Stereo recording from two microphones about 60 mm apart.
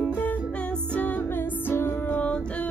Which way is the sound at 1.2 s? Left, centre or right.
Left.